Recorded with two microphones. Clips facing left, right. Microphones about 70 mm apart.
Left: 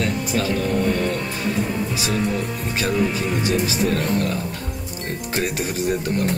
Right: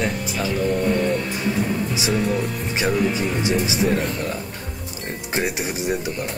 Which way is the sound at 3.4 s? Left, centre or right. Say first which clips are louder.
Right 1 dB; right.